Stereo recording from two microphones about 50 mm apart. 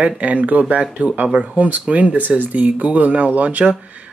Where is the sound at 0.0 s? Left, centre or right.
Right.